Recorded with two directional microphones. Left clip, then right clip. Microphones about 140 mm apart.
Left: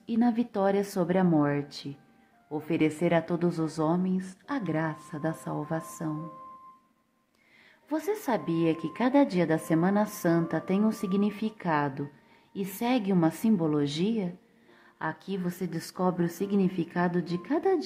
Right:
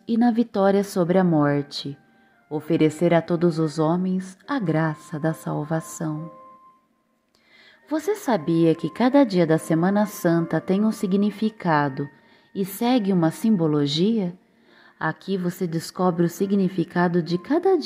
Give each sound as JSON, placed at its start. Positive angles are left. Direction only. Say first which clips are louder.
{"t": 0.0, "sound": "a woman's voice", "louder": "right 6 dB", "side_deg": -35}
{"t": 7.9, "sound": "a woman's voice", "louder": "right 6 dB", "side_deg": -35}